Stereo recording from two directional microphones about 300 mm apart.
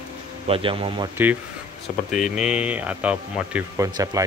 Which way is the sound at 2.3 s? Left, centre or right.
Centre.